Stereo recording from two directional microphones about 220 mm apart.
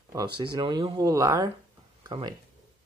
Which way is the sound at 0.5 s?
20° right (ahead or behind).